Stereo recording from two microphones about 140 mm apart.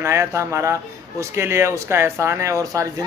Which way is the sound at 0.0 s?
20° right (ahead or behind).